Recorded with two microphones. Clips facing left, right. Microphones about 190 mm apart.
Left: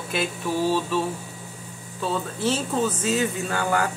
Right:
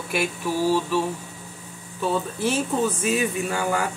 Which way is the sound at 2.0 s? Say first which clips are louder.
Right 2 dB; 15° right (ahead or behind).